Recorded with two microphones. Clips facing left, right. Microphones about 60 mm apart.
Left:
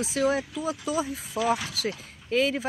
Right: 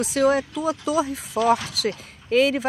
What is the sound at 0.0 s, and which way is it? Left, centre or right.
Speech, right.